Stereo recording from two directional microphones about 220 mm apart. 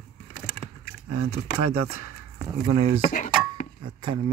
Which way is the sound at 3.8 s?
20° right (ahead or behind).